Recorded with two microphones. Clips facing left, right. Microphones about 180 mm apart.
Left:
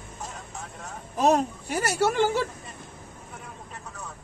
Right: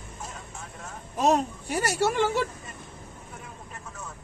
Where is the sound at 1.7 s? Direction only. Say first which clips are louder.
Left 1 dB; centre (ahead or behind).